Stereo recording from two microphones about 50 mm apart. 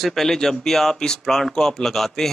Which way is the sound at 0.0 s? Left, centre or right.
Centre.